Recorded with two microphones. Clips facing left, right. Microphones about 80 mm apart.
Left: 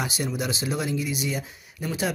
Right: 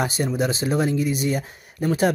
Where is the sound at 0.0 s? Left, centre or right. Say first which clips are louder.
Right 6 dB; right.